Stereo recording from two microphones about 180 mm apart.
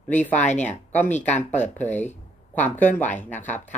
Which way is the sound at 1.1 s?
40° left (ahead or behind).